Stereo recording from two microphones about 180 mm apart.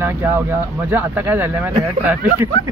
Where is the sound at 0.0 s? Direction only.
10° right (ahead or behind).